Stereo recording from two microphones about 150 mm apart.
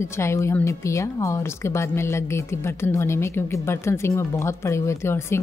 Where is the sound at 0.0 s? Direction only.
20° left (ahead or behind).